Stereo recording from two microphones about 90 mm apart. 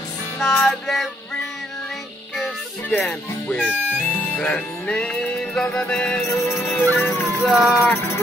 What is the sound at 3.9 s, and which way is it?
Music, 15° left (ahead or behind).